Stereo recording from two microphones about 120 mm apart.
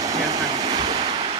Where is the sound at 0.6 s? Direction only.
45° right (ahead or behind).